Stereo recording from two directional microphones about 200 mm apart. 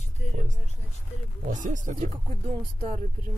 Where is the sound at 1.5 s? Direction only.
40° right (ahead or behind).